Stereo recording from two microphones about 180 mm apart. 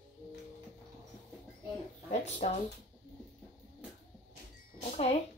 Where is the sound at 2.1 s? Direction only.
40° left (ahead or behind).